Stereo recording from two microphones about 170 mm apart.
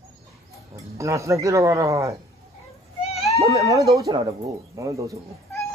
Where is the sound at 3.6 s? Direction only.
20° right (ahead or behind).